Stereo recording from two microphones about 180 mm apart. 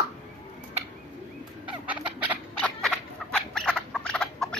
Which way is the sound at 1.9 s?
10° right (ahead or behind).